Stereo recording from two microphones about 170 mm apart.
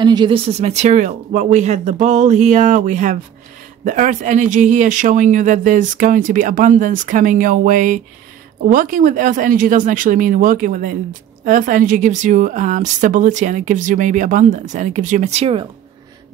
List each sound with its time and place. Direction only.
0.0 s speech: 25° right (ahead or behind)
0.5 s a woman's voice: 40° right (ahead or behind)